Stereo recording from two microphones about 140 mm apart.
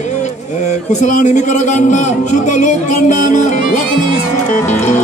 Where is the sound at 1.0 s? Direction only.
60° left (ahead or behind).